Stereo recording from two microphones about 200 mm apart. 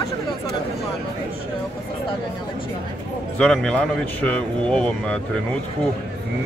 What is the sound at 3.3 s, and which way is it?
Speech, 5° left (ahead or behind).